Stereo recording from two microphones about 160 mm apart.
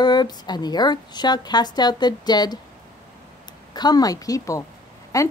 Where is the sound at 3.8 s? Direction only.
25° left (ahead or behind).